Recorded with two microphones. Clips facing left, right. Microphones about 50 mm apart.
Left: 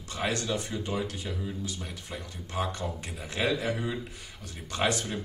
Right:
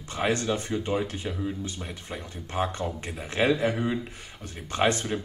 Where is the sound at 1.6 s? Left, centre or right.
Right.